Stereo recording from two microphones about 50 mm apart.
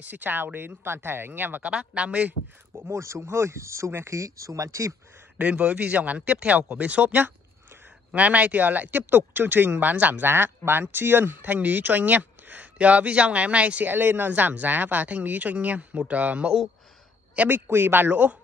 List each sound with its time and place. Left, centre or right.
0.0 s speech: right
1.6 s speech: right
2.9 s speech: right
5.4 s speech: right
10.3 s speech: right
13.8 s speech: right
17.5 s speech: right